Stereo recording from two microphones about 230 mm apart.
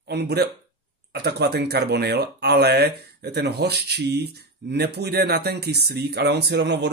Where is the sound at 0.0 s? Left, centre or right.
Right.